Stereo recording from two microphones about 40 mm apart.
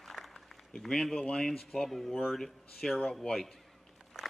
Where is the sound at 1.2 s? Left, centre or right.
Centre.